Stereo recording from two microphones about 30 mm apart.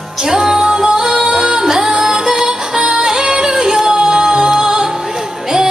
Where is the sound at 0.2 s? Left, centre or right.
Centre.